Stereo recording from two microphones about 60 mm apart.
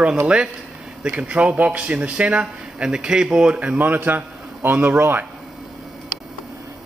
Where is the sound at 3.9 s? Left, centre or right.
Right.